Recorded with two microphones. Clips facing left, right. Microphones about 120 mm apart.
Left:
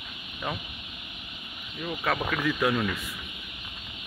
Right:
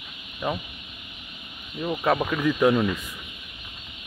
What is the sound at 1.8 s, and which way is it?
Speech, 25° right (ahead or behind).